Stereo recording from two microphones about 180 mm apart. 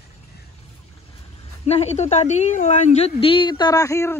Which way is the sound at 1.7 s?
35° left (ahead or behind).